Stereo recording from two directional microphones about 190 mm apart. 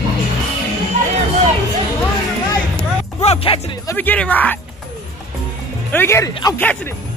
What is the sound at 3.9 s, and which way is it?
Speech, 10° left (ahead or behind).